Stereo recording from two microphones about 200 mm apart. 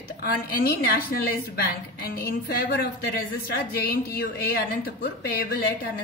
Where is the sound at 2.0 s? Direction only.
50° left (ahead or behind).